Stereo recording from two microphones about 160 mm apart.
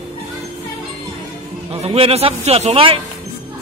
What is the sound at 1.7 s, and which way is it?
A man's voice, 35° right (ahead or behind).